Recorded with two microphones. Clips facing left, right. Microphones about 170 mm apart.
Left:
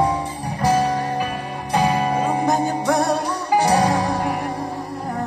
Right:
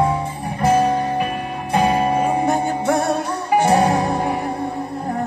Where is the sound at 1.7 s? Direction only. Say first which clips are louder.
Right 2 dB; 20° right (ahead or behind).